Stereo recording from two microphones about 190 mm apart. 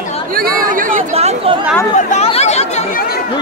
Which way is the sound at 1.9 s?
35° left (ahead or behind).